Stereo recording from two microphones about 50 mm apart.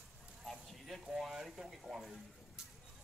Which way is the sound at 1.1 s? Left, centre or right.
Centre.